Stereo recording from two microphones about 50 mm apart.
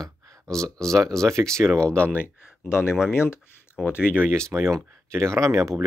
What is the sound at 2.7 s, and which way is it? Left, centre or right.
Speech, left.